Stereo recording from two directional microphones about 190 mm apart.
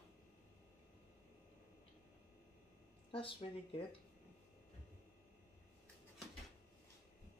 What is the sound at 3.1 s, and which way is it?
Speech, 30° left (ahead or behind).